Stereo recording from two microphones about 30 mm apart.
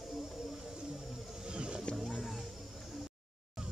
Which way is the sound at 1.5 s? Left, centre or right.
Right.